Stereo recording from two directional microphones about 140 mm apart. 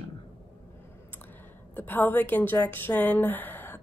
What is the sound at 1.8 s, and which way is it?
A woman's voice, 15° left (ahead or behind).